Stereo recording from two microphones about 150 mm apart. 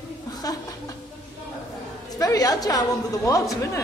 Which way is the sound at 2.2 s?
25° left (ahead or behind).